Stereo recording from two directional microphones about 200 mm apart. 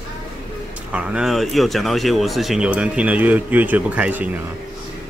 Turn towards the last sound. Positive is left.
turn(degrees=-5)  # may be behind; listen again after turning